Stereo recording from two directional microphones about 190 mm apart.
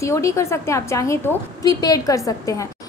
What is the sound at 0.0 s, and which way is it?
A woman's voice, 15° left (ahead or behind).